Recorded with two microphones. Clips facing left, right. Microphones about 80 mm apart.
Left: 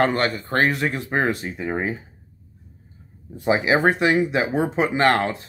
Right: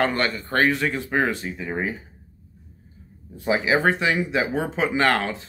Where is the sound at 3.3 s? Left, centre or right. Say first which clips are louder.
Left 2 dB; left.